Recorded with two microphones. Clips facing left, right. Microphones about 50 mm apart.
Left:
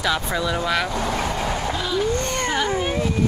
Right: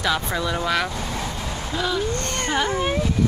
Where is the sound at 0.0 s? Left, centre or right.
Centre.